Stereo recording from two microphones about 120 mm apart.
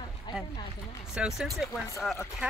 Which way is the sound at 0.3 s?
40° left (ahead or behind).